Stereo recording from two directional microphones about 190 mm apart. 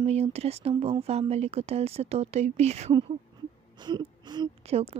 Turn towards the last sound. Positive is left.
turn(degrees=-30)  # may be behind; listen again after turning